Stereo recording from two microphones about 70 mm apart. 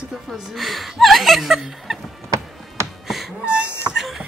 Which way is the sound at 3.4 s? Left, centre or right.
Centre.